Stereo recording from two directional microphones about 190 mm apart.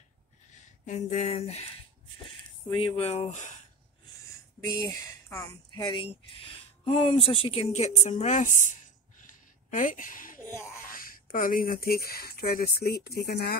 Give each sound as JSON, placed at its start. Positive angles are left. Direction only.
{"t": 0.8, "sound": "speech", "side_deg": 35}
{"t": 2.7, "sound": "speech", "side_deg": 30}
{"t": 4.6, "sound": "speech", "side_deg": 15}
{"t": 9.2, "sound": "a sound", "side_deg": 45}
{"t": 10.9, "sound": "speech", "side_deg": 45}